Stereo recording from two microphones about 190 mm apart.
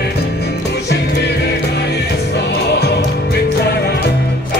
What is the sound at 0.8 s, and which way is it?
Music, 60° left (ahead or behind).